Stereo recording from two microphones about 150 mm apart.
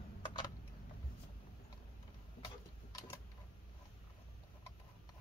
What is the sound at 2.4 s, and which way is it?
Tick-tock, 25° left (ahead or behind).